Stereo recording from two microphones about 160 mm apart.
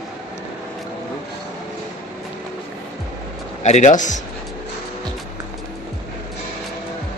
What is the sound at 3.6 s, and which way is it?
Speech, 45° left (ahead or behind).